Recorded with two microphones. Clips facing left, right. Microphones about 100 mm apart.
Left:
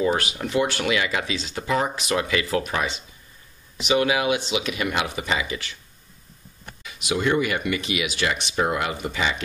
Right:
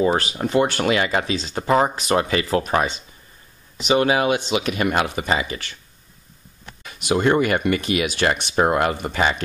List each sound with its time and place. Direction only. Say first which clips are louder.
0.0 s speech: right 3 dB; 35° right (ahead or behind)
6.8 s speech: right 5 dB; 45° right (ahead or behind)